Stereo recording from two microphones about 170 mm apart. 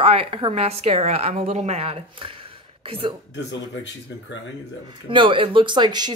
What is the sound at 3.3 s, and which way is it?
Speech, 90° left.